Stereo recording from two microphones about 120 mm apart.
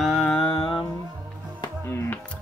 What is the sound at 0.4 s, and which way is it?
Music, 45° left (ahead or behind).